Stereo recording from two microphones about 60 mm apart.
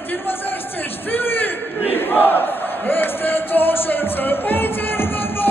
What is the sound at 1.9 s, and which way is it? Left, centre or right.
Battle cry, left.